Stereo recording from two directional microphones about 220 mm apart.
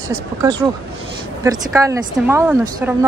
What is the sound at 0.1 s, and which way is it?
A woman's voice, 15° right (ahead or behind).